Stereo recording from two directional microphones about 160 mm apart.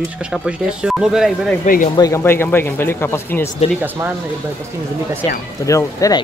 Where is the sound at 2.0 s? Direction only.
20° left (ahead or behind).